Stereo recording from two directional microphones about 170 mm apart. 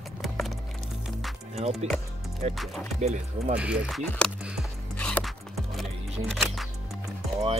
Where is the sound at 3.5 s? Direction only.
5° right (ahead or behind).